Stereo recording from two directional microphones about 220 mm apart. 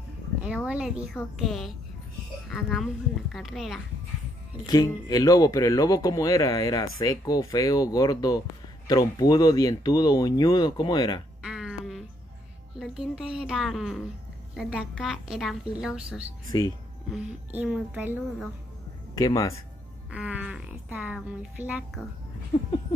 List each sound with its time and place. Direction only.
0.7 s speech: 5° right (ahead or behind)
4.6 s speech: 15° left (ahead or behind)
11.4 s a sound: 5° right (ahead or behind)
12.7 s speech: centre (ahead or behind)
19.1 s speech: 15° left (ahead or behind)
20.1 s speech: 5° right (ahead or behind)